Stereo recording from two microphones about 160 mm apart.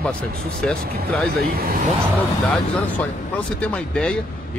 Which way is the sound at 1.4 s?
70° right (ahead or behind).